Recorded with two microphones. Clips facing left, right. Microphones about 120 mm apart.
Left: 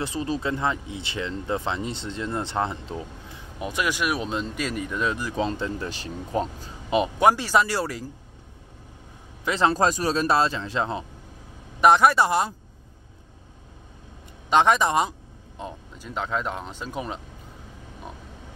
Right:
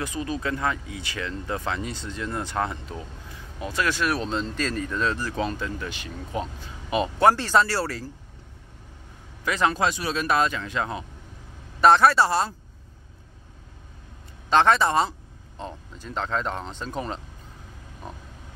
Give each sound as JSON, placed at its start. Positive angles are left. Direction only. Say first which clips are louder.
{"t": 0.0, "sound": "speech", "louder": "left 2 dB", "side_deg": 30}
{"t": 6.9, "sound": "speech", "louder": "even", "side_deg": 15}
{"t": 9.4, "sound": "speech", "louder": "left 2 dB", "side_deg": 25}
{"t": 11.8, "sound": "speech", "louder": "even", "side_deg": 15}
{"t": 14.5, "sound": "speech", "louder": "even", "side_deg": 15}